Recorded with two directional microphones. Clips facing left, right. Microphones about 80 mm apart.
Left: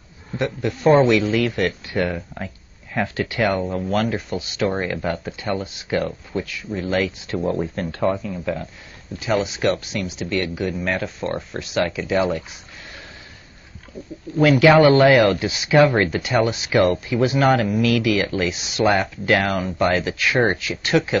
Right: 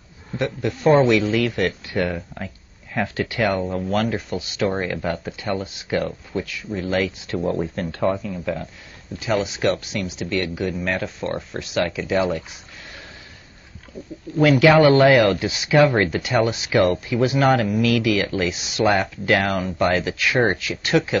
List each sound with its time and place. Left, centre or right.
0.4 s speech: left
14.4 s speech: left